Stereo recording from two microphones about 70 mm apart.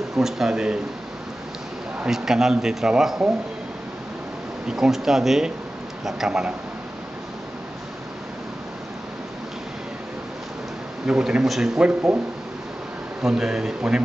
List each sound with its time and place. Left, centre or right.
0.1 s a man's voice: centre
2.0 s a man's voice: centre
4.6 s a man's voice: centre
11.1 s a man's voice: centre
13.2 s a man's voice: centre